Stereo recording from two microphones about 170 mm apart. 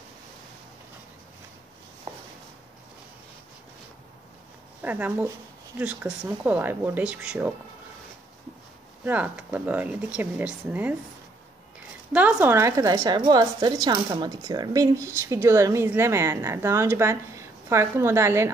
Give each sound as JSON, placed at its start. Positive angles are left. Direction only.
{"t": 4.8, "sound": "a woman's voice", "side_deg": -10}
{"t": 9.0, "sound": "a woman's voice", "side_deg": -10}
{"t": 12.1, "sound": "a woman's voice", "side_deg": -10}